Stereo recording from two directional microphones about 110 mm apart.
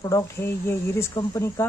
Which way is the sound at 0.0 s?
25° left (ahead or behind).